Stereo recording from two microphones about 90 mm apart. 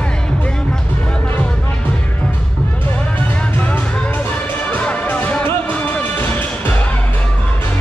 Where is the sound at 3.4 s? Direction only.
15° left (ahead or behind).